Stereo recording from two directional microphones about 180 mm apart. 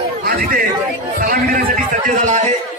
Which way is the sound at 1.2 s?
50° right (ahead or behind).